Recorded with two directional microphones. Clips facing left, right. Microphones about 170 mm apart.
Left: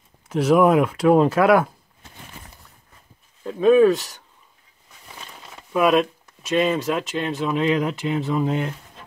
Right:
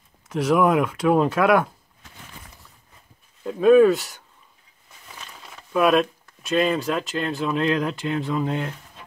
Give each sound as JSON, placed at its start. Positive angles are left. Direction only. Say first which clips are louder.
{"t": 0.3, "sound": "speech", "louder": "left 3 dB", "side_deg": 5}
{"t": 3.4, "sound": "speech", "louder": "even", "side_deg": 0}
{"t": 5.6, "sound": "speech", "louder": "left 1 dB", "side_deg": 5}